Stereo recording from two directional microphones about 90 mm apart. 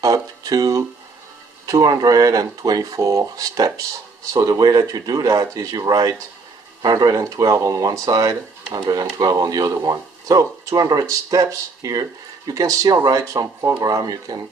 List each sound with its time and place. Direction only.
0.0 s speech: 40° right (ahead or behind)